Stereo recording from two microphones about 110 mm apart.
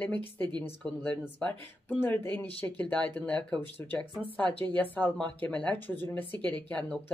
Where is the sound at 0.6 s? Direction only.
10° left (ahead or behind).